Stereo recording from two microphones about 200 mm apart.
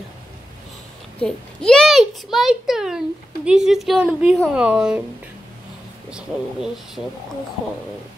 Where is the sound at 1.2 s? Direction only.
5° left (ahead or behind).